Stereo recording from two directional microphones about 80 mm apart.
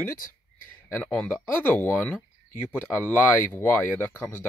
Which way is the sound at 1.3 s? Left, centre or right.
Left.